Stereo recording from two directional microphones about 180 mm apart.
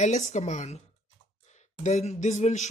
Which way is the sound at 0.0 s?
40° left (ahead or behind).